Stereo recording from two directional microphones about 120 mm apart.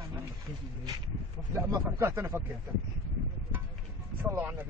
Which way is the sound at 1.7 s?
25° right (ahead or behind).